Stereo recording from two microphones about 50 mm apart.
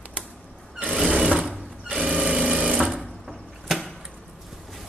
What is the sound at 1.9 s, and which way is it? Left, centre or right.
Sewing machine, centre.